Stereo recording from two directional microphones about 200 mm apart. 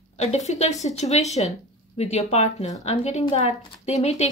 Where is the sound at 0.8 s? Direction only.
35° left (ahead or behind).